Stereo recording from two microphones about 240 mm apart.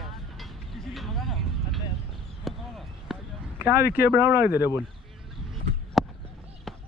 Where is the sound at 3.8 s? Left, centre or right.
Left.